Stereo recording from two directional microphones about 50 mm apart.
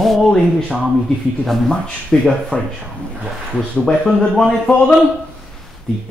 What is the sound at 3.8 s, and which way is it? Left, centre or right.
Speech, centre.